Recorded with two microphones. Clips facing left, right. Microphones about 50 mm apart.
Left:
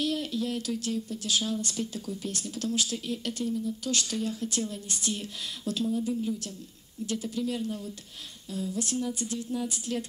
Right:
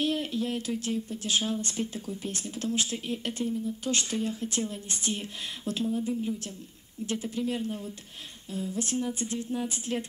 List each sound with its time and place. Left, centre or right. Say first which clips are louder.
0.0 s speech: right 1 dB; right